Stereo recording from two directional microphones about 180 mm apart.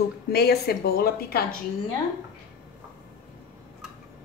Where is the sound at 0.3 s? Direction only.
60° left (ahead or behind).